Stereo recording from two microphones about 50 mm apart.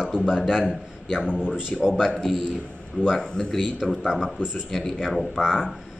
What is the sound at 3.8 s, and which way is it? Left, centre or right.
A man's voice, centre.